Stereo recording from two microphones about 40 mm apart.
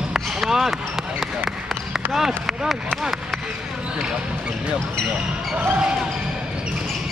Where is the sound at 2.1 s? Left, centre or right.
Centre.